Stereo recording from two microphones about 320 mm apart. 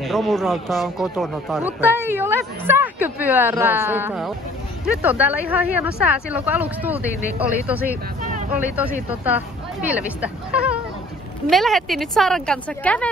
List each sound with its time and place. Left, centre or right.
0.0 s speech: centre
8.2 s vehicle: right
8.6 s speech: centre